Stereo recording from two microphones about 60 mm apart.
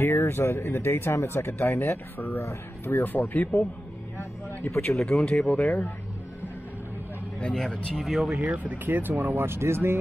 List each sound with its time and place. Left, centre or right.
0.0 s speech: left
2.3 s speech: left
2.9 s speech: left
5.1 s speech: centre
7.3 s speech: centre
7.9 s speech: centre
8.5 s speech: right